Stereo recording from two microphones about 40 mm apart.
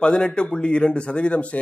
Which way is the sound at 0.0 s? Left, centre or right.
Left.